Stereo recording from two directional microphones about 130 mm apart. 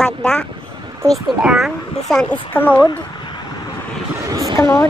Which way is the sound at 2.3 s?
15° left (ahead or behind).